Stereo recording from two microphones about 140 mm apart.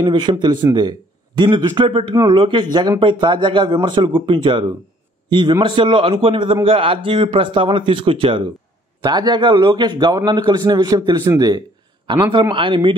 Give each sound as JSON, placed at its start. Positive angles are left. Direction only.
{"t": 0.0, "sound": "a man's voice", "side_deg": -35}